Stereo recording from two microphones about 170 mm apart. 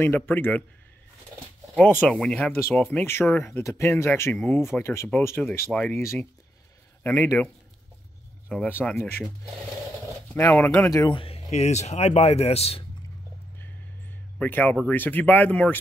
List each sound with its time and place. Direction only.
0.0 s speech: 10° left (ahead or behind)
1.8 s speech: 5° left (ahead or behind)
8.5 s speech: 10° left (ahead or behind)
10.3 s speech: 15° left (ahead or behind); by 12.8 s 35° left (ahead or behind)
14.4 s speech: 10° left (ahead or behind)